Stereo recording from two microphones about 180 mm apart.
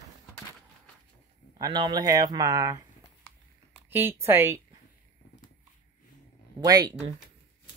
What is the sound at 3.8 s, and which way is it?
Speech, 10° right (ahead or behind).